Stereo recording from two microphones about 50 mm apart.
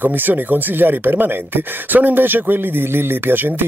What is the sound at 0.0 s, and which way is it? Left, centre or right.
Speech, right.